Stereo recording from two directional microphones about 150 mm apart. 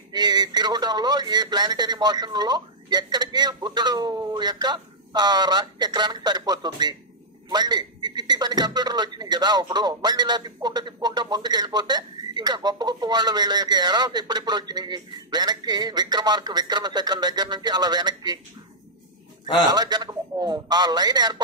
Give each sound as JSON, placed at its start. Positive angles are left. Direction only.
{"t": 0.1, "sound": "a man's voice", "side_deg": -30}
{"t": 19.7, "sound": "a man's voice", "side_deg": -25}